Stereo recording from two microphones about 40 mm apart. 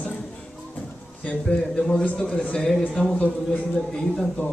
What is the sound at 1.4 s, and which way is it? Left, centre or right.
A man's voice, left.